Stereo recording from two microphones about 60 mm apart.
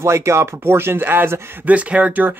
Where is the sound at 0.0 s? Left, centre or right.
Right.